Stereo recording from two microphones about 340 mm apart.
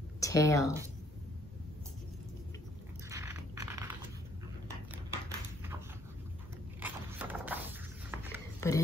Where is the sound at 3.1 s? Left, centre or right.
Centre.